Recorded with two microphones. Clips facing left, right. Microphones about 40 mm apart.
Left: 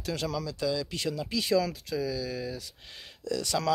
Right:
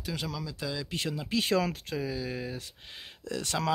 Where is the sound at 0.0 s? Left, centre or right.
Centre.